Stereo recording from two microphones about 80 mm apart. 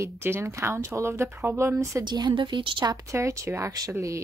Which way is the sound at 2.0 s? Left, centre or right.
Right.